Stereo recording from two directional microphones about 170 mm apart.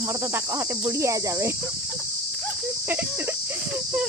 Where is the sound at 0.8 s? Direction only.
15° right (ahead or behind).